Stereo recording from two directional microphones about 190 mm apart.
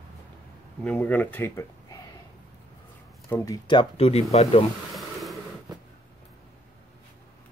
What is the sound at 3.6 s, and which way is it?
Speech, 30° left (ahead or behind).